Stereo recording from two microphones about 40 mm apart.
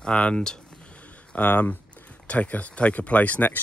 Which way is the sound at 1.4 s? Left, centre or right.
Left.